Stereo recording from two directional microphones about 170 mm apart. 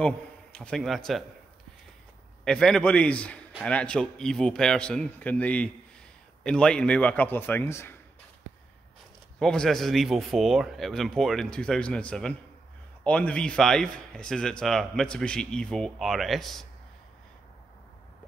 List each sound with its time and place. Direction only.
0.0 s a man's voice: 5° left (ahead or behind)
2.4 s a man's voice: 5° left (ahead or behind)
9.4 s a man's voice: 5° left (ahead or behind)